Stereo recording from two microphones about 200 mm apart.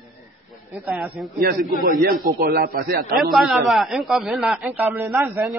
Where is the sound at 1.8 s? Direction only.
45° right (ahead or behind).